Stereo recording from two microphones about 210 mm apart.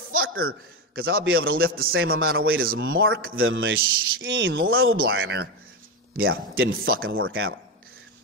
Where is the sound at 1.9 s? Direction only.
75° right (ahead or behind).